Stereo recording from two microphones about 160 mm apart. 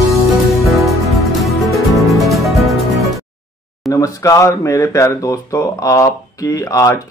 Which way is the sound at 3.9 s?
20° left (ahead or behind).